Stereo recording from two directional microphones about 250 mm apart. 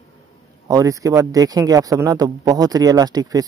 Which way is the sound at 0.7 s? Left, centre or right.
Centre.